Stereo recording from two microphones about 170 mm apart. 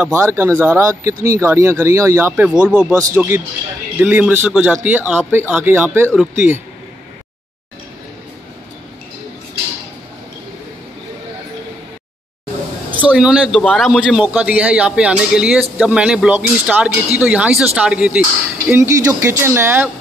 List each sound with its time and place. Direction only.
0.0 s speech: 15° right (ahead or behind)
13.0 s a man's voice: 5° right (ahead or behind)
18.7 s speech: 15° right (ahead or behind)